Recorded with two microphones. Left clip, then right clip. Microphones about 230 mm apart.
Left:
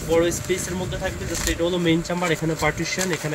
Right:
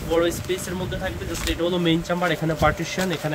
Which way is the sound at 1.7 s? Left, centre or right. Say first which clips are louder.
Right 2 dB; right.